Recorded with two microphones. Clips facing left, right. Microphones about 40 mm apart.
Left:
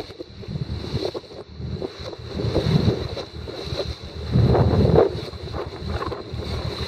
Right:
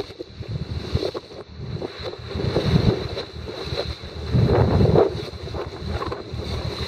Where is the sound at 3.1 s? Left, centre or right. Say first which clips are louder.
Right 1 dB; right.